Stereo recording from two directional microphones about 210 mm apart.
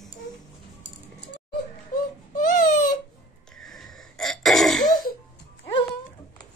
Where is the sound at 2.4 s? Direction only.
40° left (ahead or behind).